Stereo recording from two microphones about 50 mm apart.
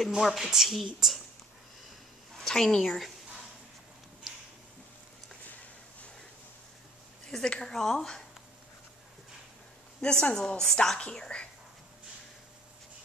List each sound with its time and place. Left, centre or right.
0.1 s speech: centre
2.4 s a woman's voice: centre
4.2 s a sound: centre
7.2 s a woman's voice: centre
10.0 s a woman's voice: centre
11.0 s a woman's voice: left